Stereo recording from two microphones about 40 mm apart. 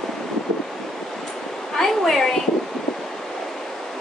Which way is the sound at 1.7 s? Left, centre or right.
Centre.